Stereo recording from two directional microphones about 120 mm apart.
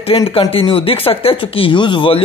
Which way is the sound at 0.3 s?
50° left (ahead or behind).